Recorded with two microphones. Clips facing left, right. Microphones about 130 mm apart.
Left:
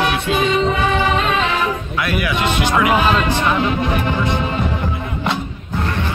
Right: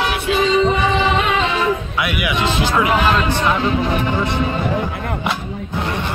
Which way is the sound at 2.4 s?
30° right (ahead or behind).